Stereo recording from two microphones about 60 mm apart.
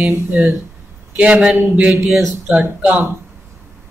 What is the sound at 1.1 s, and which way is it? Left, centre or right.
Speech, right.